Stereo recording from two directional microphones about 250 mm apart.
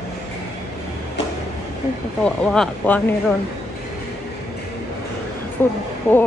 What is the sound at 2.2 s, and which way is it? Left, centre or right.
Speech, centre.